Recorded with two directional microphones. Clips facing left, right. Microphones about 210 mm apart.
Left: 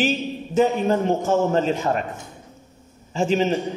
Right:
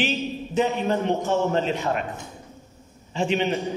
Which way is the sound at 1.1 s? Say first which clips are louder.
Left 3 dB; 45° left (ahead or behind).